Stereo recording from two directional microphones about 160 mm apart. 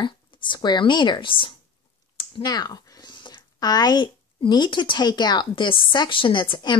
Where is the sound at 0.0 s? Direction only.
30° left (ahead or behind).